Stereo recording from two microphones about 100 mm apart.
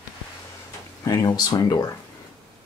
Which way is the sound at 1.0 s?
40° left (ahead or behind).